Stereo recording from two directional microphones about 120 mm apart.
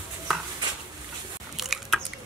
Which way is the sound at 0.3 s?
Centre (ahead or behind).